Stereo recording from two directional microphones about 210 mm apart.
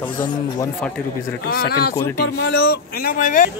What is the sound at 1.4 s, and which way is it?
Speech, 45° left (ahead or behind).